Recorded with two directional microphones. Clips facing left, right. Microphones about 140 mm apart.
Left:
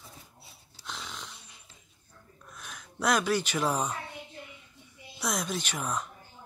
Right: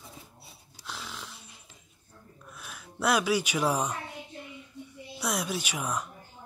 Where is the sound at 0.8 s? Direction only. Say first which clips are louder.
Even; 5° right (ahead or behind).